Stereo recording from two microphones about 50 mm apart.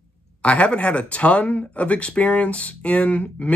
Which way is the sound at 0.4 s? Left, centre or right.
Left.